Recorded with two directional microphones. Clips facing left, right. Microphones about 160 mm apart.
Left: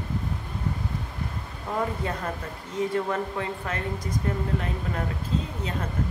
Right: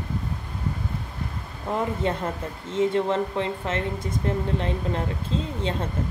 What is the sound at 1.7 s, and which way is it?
Speech, 25° right (ahead or behind).